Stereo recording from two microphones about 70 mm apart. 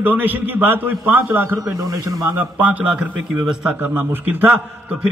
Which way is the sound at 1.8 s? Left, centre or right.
Right.